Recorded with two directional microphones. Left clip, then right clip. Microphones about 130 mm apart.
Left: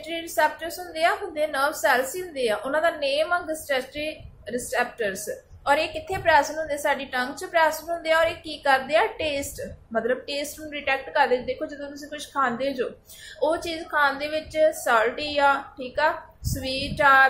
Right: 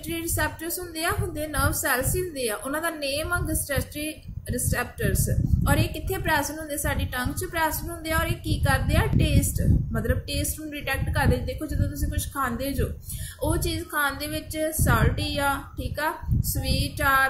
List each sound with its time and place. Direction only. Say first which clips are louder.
0.1 s a woman's voice: left 5 dB; 35° right (ahead or behind)